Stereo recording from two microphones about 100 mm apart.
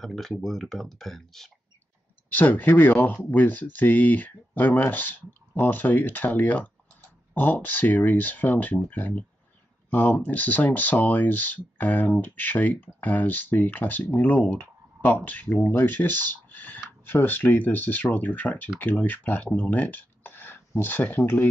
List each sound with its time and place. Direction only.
0.0 s speech: centre (ahead or behind)
2.3 s speech: 15° left (ahead or behind)